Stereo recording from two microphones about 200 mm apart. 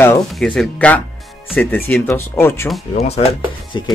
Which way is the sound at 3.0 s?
30° left (ahead or behind).